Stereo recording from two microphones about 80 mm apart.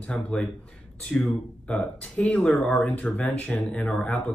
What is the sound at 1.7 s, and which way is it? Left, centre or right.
Speech, centre.